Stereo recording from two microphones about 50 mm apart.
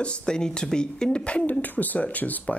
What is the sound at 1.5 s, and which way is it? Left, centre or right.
Speech, left.